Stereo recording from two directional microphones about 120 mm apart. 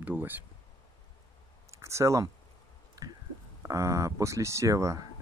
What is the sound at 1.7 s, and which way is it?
Speech, 25° right (ahead or behind).